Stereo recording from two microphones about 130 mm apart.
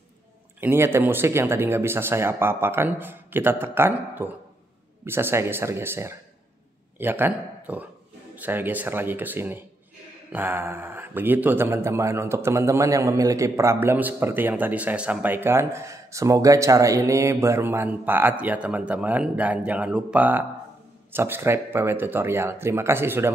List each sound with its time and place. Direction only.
0.6 s speech: 15° right (ahead or behind)